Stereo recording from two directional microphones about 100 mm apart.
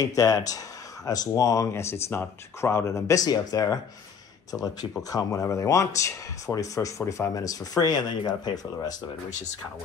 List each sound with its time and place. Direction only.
0.0 s speech: 35° left (ahead or behind)
5.1 s speech: 35° left (ahead or behind)